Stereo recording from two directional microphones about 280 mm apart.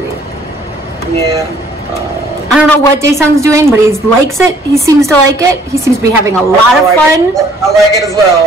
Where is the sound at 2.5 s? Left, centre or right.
Centre.